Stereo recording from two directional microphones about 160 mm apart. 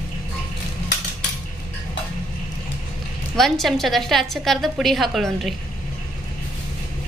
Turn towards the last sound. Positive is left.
turn(degrees=0)  # may be behind; listen again after turning